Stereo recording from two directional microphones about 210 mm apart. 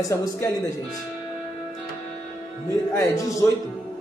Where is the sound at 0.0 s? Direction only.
15° left (ahead or behind).